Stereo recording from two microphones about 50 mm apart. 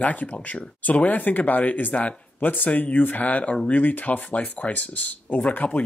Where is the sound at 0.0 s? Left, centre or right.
Left.